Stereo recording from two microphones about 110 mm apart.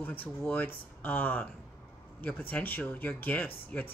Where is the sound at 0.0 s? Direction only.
15° left (ahead or behind).